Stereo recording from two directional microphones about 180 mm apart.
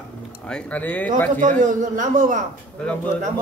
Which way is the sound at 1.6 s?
45° right (ahead or behind).